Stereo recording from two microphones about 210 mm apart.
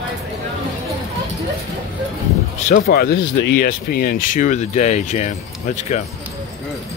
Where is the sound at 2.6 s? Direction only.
45° left (ahead or behind).